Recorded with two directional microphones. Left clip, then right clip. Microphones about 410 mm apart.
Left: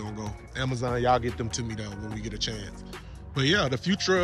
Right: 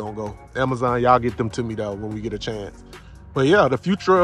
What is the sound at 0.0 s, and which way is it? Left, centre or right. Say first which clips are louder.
Speech: right 9 dB; centre.